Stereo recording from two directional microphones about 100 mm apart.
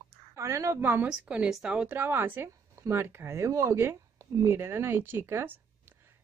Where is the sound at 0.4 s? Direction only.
30° right (ahead or behind).